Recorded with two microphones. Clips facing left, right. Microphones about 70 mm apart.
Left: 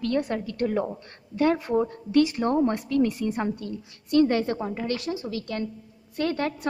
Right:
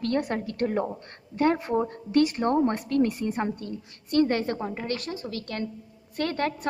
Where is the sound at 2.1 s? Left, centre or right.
Right.